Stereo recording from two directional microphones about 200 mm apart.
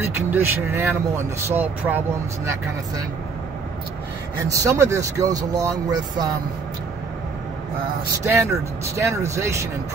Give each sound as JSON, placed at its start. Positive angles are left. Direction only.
{"t": 0.3, "sound": "speech", "side_deg": -10}
{"t": 4.4, "sound": "speech", "side_deg": -15}
{"t": 8.4, "sound": "speech", "side_deg": -15}